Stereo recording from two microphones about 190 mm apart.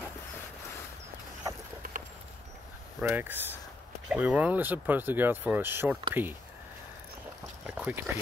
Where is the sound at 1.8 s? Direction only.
45° right (ahead or behind).